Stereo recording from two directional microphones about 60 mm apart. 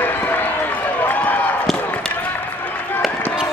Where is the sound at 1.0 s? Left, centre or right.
Left.